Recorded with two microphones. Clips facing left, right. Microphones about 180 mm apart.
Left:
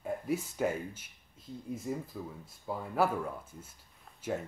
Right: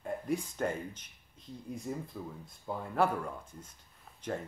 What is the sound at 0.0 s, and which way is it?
Speech, 5° left (ahead or behind).